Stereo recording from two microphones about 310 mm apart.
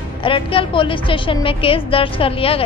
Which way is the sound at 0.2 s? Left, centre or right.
Centre.